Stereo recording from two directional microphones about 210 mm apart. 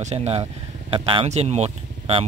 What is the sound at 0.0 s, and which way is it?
Speech, 30° right (ahead or behind).